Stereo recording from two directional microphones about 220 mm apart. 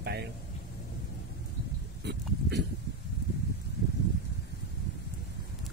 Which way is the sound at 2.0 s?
50° right (ahead or behind).